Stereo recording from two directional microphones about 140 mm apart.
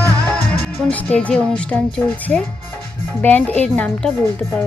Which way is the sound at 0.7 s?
10° left (ahead or behind).